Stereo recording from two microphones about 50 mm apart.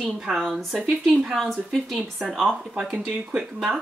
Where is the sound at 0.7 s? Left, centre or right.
Centre.